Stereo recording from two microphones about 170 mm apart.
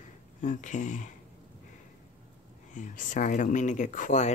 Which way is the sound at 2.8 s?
50° left (ahead or behind).